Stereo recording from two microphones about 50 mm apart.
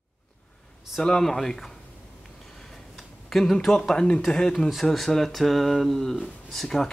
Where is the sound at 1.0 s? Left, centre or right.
Centre.